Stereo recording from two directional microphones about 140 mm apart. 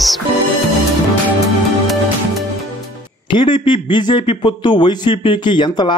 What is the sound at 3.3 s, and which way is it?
Speech, 35° left (ahead or behind).